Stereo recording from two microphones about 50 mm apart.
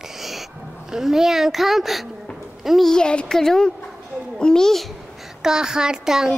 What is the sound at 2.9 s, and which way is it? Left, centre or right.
Speech, centre.